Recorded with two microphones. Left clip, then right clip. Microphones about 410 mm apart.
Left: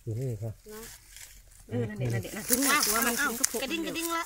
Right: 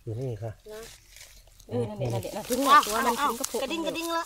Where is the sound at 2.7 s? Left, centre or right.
Centre.